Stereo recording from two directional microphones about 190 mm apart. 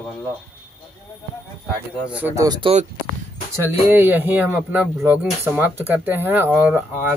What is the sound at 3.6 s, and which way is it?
Speech, 10° right (ahead or behind).